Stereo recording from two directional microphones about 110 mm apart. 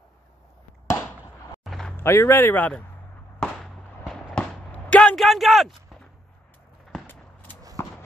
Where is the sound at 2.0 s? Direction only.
20° left (ahead or behind).